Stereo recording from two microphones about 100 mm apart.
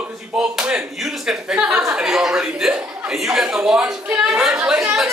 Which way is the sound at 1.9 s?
5° right (ahead or behind).